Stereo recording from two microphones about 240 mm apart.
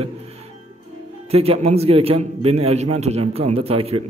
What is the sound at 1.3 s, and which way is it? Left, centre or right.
A man's voice, right.